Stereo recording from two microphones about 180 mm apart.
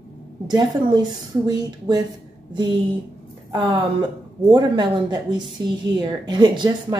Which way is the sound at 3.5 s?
25° right (ahead or behind).